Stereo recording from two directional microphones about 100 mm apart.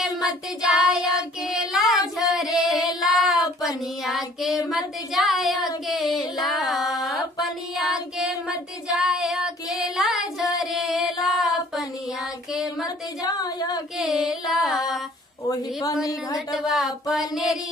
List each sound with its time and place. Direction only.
0.8 s child singing: centre (ahead or behind)
2.3 s female singing: centre (ahead or behind)
3.6 s child singing: centre (ahead or behind)
5.9 s music: centre (ahead or behind)
7.1 s child singing: centre (ahead or behind)
10.6 s music: 5° right (ahead or behind)
11.2 s a sound: centre (ahead or behind)
12.8 s a sound: 40° left (ahead or behind)
13.9 s carnatic music: 5° right (ahead or behind)
15.4 s speech: 35° left (ahead or behind)
16.3 s speech: centre (ahead or behind)